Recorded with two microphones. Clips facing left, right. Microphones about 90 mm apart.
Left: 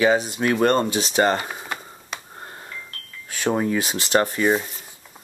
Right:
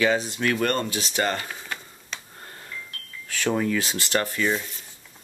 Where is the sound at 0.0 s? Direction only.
15° left (ahead or behind).